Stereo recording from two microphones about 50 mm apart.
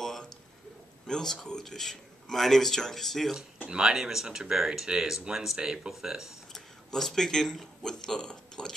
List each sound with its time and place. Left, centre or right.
0.0 s a sound: centre
1.0 s a man's voice: centre
3.6 s speech: centre
6.5 s speech: centre